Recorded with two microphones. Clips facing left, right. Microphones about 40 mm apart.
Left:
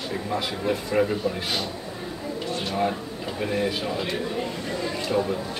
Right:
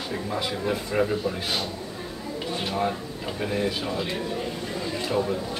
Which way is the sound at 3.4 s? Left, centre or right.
Centre.